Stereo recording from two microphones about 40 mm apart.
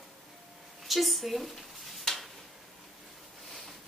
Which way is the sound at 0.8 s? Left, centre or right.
Centre.